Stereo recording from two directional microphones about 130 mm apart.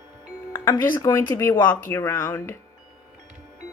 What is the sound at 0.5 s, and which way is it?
Speech, 25° left (ahead or behind).